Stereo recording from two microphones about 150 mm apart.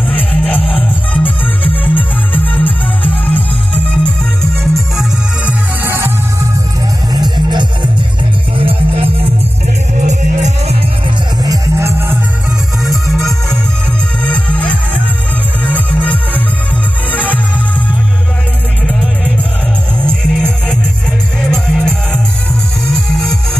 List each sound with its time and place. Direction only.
0.1 s music: 10° left (ahead or behind)
5.5 s music: 15° right (ahead or behind)
7.1 s music: 30° right (ahead or behind)
9.9 s music: 50° right (ahead or behind)
11.4 s music: 20° right (ahead or behind)
12.8 s music: centre (ahead or behind)
20.0 s music: 5° left (ahead or behind)